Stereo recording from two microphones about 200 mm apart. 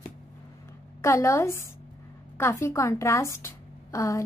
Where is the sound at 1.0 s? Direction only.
15° left (ahead or behind).